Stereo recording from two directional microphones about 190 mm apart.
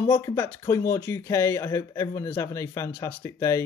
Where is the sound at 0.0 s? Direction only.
15° left (ahead or behind).